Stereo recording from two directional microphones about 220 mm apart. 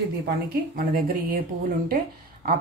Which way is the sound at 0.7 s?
40° right (ahead or behind).